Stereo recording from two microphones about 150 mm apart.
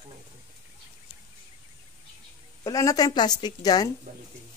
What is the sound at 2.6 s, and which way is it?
Speech, 25° left (ahead or behind).